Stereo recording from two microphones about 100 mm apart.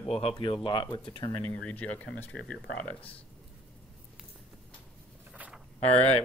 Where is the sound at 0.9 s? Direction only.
50° left (ahead or behind).